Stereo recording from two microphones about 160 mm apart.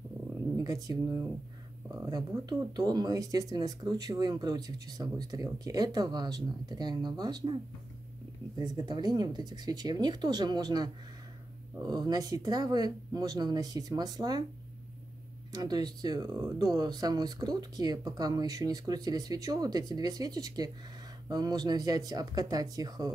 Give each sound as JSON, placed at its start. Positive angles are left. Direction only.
{"t": 0.7, "sound": "speech", "side_deg": -20}
{"t": 2.7, "sound": "speech", "side_deg": -25}
{"t": 8.5, "sound": "speech", "side_deg": -25}
{"t": 15.5, "sound": "speech", "side_deg": -25}